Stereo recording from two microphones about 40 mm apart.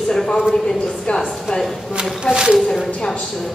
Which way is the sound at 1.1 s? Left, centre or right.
Centre.